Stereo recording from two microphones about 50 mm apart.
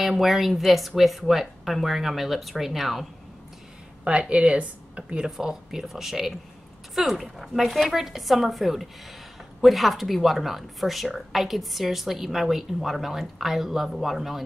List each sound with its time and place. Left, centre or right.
0.0 s speech: centre
4.0 s speech: right
5.2 s speech: centre